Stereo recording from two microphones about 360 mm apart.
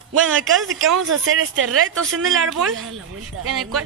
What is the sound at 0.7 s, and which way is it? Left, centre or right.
Speech, right.